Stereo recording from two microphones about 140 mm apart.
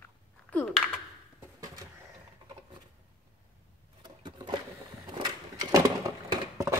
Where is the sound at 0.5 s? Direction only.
5° left (ahead or behind).